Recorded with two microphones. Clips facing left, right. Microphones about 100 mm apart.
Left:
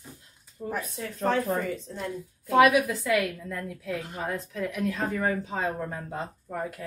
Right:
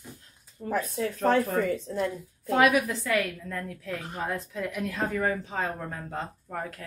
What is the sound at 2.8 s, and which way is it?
Speech, 5° left (ahead or behind).